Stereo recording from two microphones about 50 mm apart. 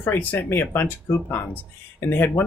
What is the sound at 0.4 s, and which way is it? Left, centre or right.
Speech, left.